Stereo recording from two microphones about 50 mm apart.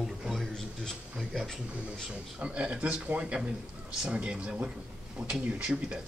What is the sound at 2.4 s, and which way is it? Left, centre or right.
Speech, right.